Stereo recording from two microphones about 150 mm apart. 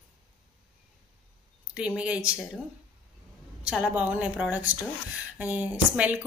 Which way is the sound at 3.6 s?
10° right (ahead or behind).